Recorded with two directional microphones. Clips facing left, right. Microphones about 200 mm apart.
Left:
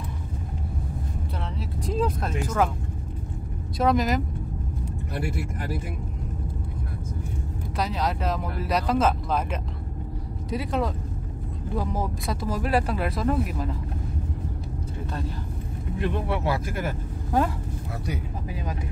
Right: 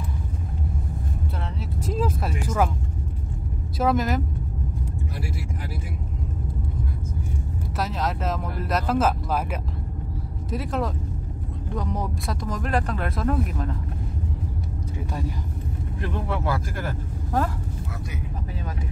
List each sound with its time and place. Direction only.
1.6 s speech: centre (ahead or behind)
3.7 s speech: 5° right (ahead or behind)
5.1 s speech: 60° left (ahead or behind)
7.7 s speech: centre (ahead or behind)
16.0 s speech: 10° left (ahead or behind)